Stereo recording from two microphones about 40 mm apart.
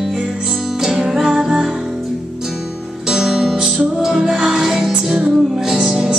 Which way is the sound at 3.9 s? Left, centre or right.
Centre.